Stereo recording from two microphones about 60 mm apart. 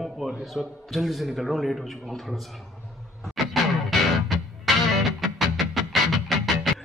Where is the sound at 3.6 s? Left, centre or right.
Centre.